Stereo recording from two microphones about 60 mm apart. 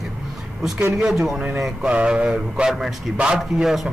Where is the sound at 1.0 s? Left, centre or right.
Centre.